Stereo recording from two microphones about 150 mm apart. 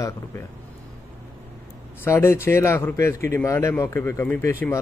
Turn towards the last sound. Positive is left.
turn(degrees=15)  # may be behind; listen again after turning